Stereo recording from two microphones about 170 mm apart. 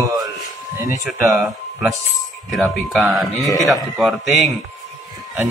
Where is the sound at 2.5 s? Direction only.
Centre (ahead or behind).